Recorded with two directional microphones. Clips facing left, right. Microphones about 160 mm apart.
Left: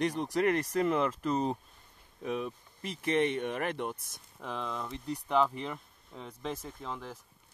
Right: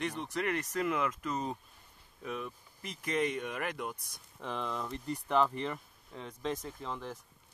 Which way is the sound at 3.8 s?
Centre (ahead or behind).